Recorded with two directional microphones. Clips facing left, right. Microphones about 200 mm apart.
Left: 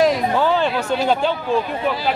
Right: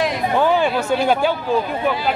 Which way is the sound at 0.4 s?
15° right (ahead or behind).